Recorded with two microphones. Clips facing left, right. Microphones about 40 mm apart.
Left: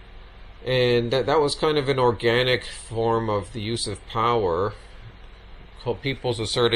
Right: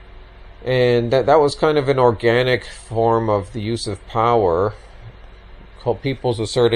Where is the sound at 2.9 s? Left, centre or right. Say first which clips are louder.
Right 6 dB; left.